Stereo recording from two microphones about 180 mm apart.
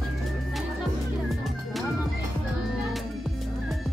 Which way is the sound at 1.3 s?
Centre (ahead or behind).